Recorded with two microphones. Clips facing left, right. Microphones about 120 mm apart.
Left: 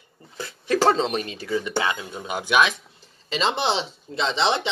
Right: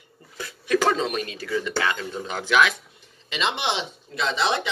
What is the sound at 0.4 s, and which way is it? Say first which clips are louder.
Speech: left 1 dB; 30° left (ahead or behind).